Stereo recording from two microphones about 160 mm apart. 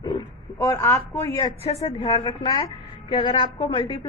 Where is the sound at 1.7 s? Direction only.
35° left (ahead or behind).